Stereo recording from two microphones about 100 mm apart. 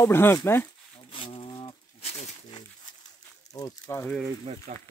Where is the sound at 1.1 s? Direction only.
55° left (ahead or behind).